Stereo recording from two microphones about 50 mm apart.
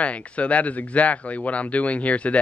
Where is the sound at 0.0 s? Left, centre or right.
Left.